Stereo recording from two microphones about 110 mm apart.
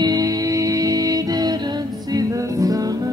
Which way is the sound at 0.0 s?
35° right (ahead or behind).